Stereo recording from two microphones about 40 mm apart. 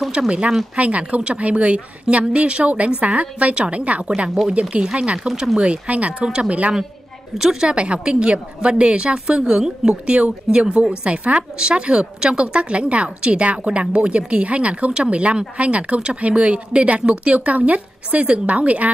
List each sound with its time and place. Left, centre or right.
0.2 s a woman's voice: right
4.5 s a woman's voice: right
7.6 s a woman's voice: right
11.5 s a woman's voice: centre; by 18.9 s right